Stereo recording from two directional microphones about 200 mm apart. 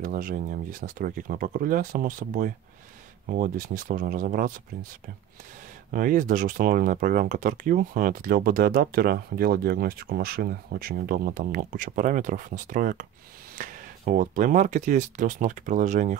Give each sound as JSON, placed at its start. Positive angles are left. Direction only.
{"t": 0.0, "sound": "speech", "side_deg": -45}
{"t": 5.9, "sound": "speech", "side_deg": -45}